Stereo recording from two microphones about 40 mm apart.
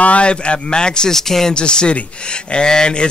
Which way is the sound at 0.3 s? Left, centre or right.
Left.